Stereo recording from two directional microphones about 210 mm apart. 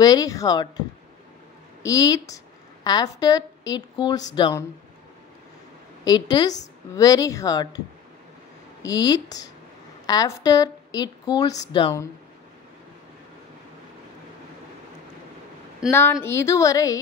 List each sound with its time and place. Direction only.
0.0 s a woman's voice: 15° left (ahead or behind)
6.0 s speech: 20° left (ahead or behind)
8.8 s speech: 20° left (ahead or behind)
15.9 s speech: 10° left (ahead or behind)